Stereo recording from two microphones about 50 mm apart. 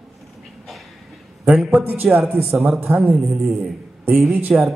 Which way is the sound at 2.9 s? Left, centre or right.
Right.